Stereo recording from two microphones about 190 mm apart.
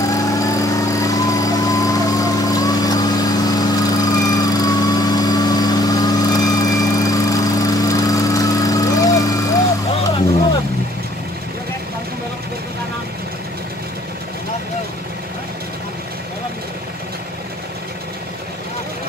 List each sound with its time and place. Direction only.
0.1 s vehicle: 20° left (ahead or behind)